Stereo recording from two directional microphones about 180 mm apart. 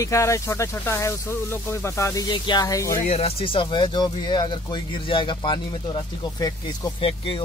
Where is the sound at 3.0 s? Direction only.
35° left (ahead or behind).